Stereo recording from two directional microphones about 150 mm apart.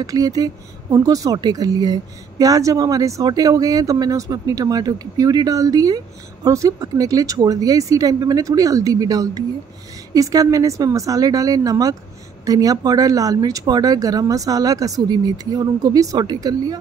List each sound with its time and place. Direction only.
0.0 s a woman's voice: 25° right (ahead or behind)